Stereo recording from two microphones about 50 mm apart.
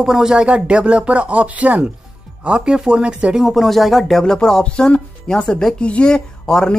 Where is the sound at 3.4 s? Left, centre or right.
Centre.